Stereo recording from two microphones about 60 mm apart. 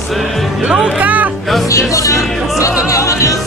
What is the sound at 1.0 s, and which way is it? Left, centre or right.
Music, right.